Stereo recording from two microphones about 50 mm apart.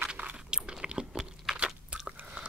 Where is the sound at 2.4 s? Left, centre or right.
Right.